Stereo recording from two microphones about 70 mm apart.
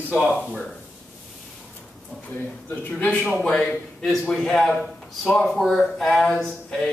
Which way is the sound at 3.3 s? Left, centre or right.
Centre.